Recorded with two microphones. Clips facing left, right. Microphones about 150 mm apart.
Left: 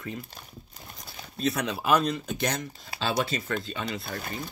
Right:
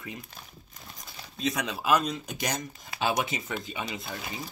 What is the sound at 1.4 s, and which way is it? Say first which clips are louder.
Speech: left 1 dB; 10° right (ahead or behind).